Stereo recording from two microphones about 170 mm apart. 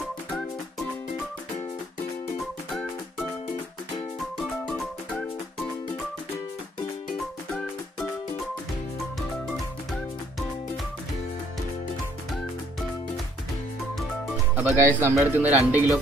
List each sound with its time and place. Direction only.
0.0 s music: centre (ahead or behind)
2.7 s music: centre (ahead or behind)
4.4 s music: centre (ahead or behind)
13.9 s speech: 5° right (ahead or behind)